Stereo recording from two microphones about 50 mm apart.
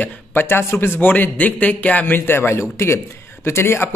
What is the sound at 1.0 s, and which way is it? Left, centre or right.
A man's voice, left.